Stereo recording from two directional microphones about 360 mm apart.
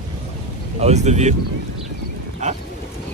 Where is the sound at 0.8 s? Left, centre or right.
Centre.